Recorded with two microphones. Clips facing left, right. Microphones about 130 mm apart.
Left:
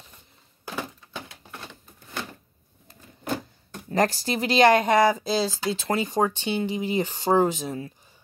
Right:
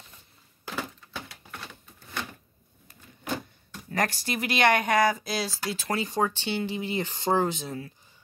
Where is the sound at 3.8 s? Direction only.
30° left (ahead or behind).